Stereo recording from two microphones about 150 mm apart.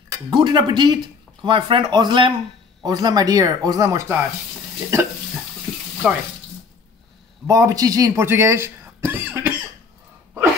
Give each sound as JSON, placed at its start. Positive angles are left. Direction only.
{"t": 0.3, "sound": "speech", "side_deg": -30}
{"t": 6.0, "sound": "speech", "side_deg": -5}
{"t": 7.4, "sound": "speech", "side_deg": -20}